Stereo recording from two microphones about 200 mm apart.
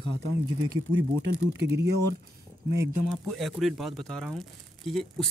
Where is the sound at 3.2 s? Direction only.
Centre (ahead or behind).